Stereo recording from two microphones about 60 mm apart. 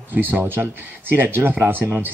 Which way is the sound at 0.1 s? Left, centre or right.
Right.